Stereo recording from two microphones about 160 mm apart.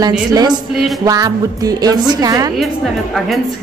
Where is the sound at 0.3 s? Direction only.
25° right (ahead or behind).